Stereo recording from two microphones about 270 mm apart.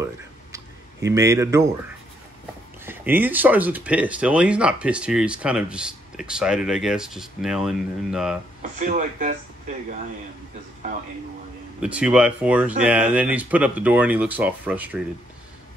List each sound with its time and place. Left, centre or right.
1.0 s speech: centre
2.8 s speech: centre
8.7 s speech: right
11.8 s speech: centre